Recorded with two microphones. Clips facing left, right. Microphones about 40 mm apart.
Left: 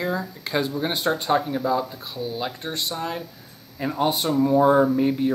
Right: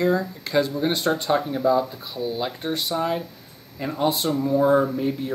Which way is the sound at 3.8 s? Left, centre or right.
Centre.